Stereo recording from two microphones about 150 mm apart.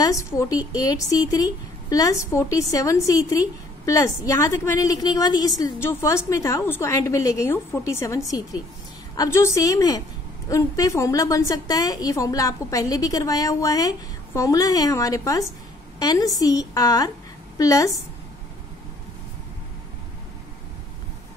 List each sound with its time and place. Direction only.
0.0 s a woman's voice: 20° left (ahead or behind)